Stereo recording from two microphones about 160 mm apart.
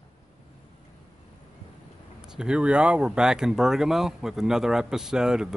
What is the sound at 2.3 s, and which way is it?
Speech, 5° right (ahead or behind).